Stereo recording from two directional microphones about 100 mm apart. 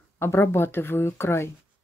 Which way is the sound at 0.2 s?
25° left (ahead or behind).